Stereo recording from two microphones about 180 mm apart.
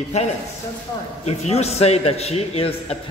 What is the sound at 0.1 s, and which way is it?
A man's voice, 35° left (ahead or behind).